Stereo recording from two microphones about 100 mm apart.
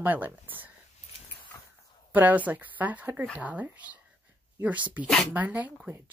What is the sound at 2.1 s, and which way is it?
Speech, 15° right (ahead or behind).